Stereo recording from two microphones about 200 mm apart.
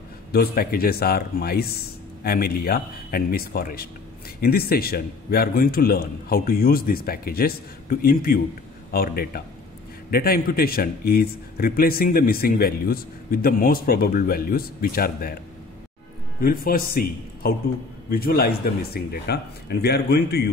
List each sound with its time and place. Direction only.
0.3 s a man's voice: 50° left (ahead or behind)
16.3 s a man's voice: 45° left (ahead or behind)